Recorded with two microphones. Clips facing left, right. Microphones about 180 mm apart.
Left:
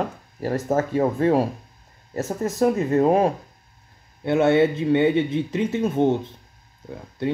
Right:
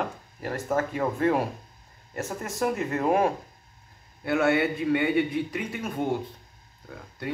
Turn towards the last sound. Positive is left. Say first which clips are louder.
# left 8 dB
turn(degrees=25)  # may be behind; listen again after turning